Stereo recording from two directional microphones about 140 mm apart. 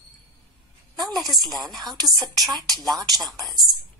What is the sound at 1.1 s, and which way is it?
Speech, centre (ahead or behind).